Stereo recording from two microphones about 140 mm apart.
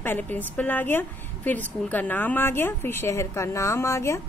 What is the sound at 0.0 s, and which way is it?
A woman's voice, 15° left (ahead or behind).